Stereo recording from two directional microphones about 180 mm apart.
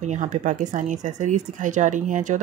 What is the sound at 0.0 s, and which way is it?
Speech, 40° right (ahead or behind).